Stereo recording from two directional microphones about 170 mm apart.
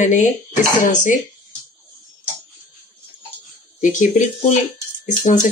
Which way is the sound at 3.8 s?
45° left (ahead or behind).